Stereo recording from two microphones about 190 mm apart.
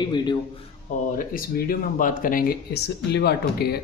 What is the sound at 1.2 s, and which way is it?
Speech, 50° left (ahead or behind).